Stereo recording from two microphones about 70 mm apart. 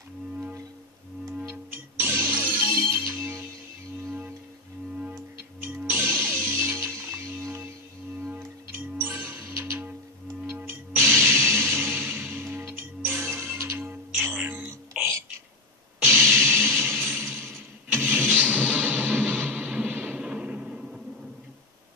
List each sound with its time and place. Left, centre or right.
1.5 s music: right
5.7 s music: right
8.4 s music: right
14.2 s a sound: right
16.0 s music: right
20.2 s music: centre